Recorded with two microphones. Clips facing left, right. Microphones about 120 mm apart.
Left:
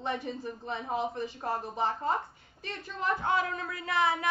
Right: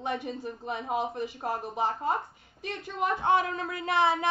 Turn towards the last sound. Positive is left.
turn(degrees=-25)  # may be behind; listen again after turning